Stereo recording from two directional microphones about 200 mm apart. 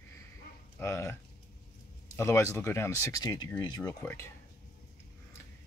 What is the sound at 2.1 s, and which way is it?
Speech, 15° left (ahead or behind).